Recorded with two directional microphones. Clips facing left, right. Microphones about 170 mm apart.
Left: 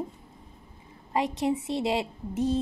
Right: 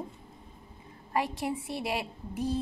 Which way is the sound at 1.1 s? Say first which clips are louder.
Left 4 dB; 20° left (ahead or behind).